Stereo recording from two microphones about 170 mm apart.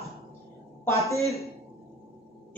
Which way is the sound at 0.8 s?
15° left (ahead or behind).